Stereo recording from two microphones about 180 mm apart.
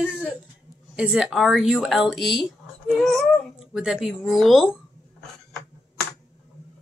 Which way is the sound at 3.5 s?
Centre (ahead or behind).